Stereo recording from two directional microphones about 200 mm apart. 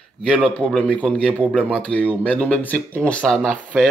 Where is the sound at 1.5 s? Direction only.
5° left (ahead or behind).